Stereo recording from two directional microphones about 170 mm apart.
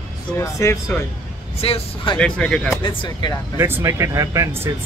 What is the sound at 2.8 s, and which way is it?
Speech, 25° left (ahead or behind).